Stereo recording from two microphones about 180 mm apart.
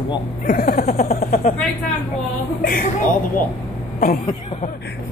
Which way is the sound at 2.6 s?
55° left (ahead or behind).